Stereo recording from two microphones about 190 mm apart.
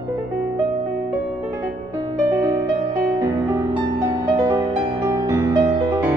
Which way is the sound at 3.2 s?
15° right (ahead or behind).